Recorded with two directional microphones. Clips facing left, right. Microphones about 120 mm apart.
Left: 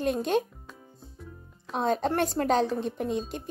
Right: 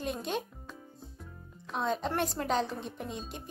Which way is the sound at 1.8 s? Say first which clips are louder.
Left 5 dB; 55° left (ahead or behind).